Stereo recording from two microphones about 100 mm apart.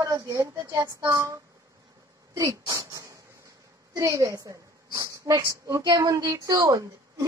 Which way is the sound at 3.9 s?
35° right (ahead or behind).